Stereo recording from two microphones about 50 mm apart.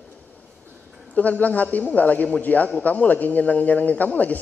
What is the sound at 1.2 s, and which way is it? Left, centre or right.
A man's voice, left.